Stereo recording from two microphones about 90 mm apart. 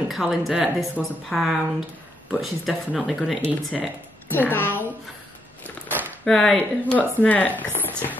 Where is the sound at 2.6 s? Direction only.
Centre (ahead or behind).